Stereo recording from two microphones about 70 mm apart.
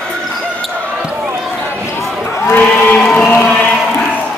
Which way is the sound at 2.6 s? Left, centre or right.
Left.